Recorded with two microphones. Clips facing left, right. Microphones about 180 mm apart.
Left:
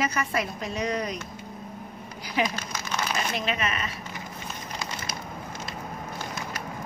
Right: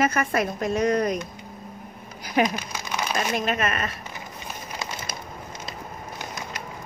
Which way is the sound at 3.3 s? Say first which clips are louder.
Right 4 dB; 50° right (ahead or behind).